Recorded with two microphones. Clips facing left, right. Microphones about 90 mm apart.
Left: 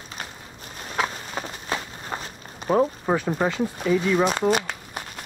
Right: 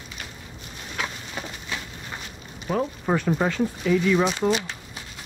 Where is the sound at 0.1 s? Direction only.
40° left (ahead or behind).